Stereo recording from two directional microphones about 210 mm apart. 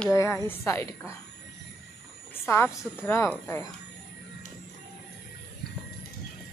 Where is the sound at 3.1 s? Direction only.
10° left (ahead or behind).